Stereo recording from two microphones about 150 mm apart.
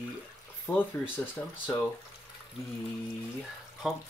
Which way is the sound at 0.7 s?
15° left (ahead or behind).